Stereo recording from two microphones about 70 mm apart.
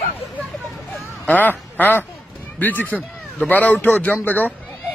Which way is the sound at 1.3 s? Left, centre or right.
Left.